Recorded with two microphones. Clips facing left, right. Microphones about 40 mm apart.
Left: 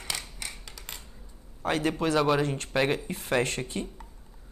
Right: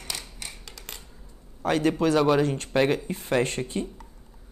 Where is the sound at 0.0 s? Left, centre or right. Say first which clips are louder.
Left 1 dB; left.